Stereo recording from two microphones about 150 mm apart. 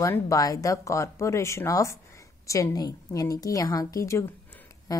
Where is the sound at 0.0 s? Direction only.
20° left (ahead or behind).